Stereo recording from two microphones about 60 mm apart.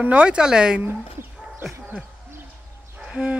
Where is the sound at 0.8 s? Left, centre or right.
Right.